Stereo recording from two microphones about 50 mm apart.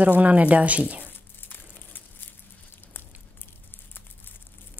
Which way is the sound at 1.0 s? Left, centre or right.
Left.